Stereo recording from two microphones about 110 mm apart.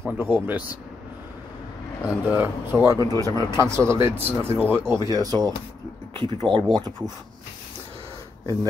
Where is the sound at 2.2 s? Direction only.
15° right (ahead or behind); by 5.5 s 35° right (ahead or behind).